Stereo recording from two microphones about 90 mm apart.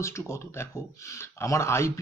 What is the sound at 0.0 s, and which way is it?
Speech, 30° left (ahead or behind).